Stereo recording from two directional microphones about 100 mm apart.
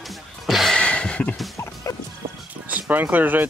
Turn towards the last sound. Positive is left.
turn(degrees=-15)  # may be behind; listen again after turning